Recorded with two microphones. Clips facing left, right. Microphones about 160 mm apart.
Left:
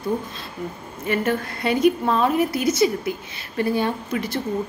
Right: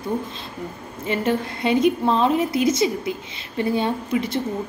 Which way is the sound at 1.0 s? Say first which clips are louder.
Even; 25° right (ahead or behind).